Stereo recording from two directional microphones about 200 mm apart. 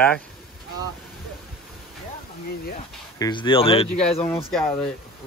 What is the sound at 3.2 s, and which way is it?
Speech, 25° left (ahead or behind).